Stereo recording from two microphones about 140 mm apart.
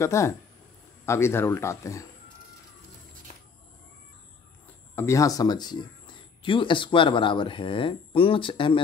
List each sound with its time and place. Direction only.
0.0 s speech: 20° left (ahead or behind)
4.9 s speech: 20° left (ahead or behind); by 8.8 s 35° left (ahead or behind)